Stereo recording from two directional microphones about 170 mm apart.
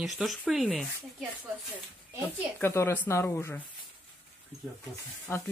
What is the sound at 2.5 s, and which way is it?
Speech, 15° left (ahead or behind).